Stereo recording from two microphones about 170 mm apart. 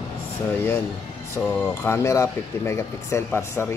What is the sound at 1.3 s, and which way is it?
Speech, 10° left (ahead or behind).